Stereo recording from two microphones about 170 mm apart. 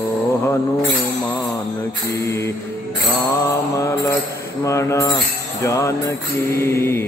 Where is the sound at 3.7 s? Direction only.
20° left (ahead or behind).